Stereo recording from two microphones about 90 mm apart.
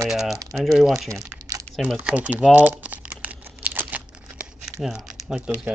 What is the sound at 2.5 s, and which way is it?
Crumpling, 20° right (ahead or behind).